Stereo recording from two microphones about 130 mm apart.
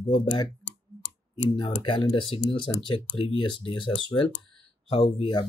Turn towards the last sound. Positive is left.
turn(degrees=40)  # may be behind; listen again after turning